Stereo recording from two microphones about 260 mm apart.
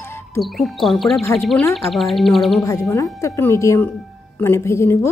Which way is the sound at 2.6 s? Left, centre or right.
Centre.